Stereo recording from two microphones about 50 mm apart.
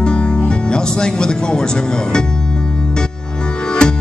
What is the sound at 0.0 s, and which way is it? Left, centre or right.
Music, centre.